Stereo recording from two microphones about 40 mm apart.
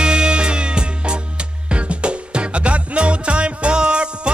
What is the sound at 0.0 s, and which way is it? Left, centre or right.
Music, right.